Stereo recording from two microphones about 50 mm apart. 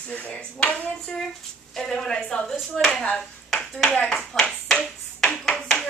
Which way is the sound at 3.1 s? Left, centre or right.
Centre.